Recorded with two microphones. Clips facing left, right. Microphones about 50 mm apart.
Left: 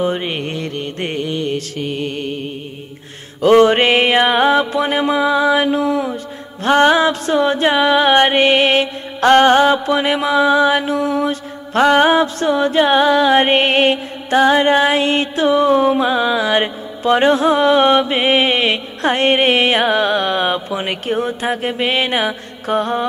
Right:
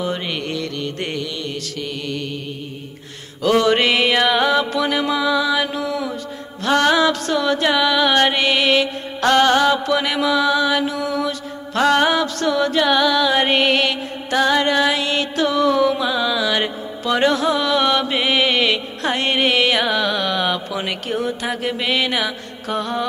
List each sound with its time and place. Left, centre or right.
0.0 s music: left
11.8 s music: left